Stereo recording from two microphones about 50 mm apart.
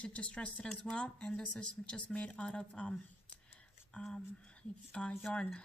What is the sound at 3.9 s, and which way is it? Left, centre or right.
Speech, centre.